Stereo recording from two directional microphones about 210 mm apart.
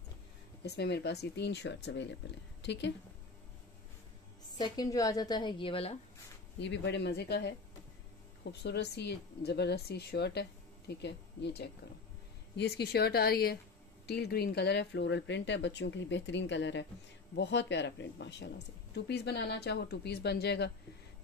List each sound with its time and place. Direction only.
0.7 s speech: 55° left (ahead or behind)
4.6 s a woman's voice: 20° left (ahead or behind)
6.6 s speech: 55° left (ahead or behind)